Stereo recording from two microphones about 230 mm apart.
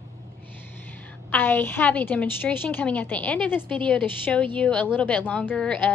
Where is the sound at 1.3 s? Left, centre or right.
Centre.